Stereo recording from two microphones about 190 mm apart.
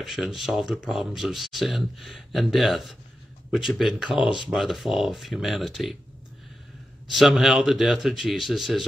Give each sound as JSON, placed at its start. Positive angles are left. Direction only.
{"t": 0.0, "sound": "speech", "side_deg": 0}
{"t": 7.1, "sound": "speech", "side_deg": 0}